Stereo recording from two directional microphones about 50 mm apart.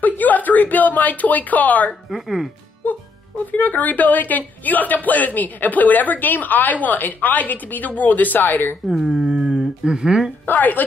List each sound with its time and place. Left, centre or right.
0.0 s speech: left
2.0 s speech: centre
3.5 s a woman's voice: left
8.8 s speech: centre
10.4 s a woman's voice: left